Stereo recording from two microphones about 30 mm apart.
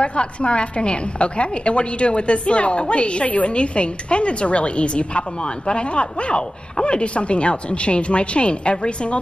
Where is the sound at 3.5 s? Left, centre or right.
Left.